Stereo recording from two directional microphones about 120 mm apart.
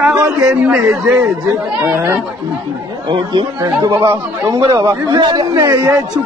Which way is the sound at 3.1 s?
40° right (ahead or behind).